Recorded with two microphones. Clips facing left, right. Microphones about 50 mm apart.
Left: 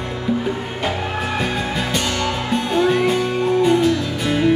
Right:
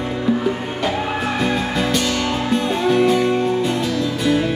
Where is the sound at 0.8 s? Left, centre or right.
Centre.